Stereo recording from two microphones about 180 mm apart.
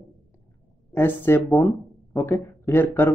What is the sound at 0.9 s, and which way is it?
Speech, 10° left (ahead or behind).